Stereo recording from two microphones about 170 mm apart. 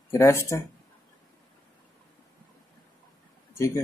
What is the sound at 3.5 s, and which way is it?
Speech, 15° left (ahead or behind).